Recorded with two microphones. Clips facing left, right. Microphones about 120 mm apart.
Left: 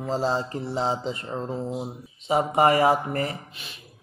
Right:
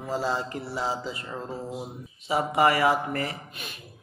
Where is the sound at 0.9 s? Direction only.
40° left (ahead or behind).